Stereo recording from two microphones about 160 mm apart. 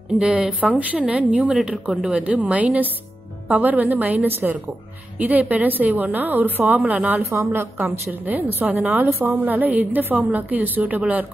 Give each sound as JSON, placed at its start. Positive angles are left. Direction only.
{"t": 0.2, "sound": "a woman's voice", "side_deg": -5}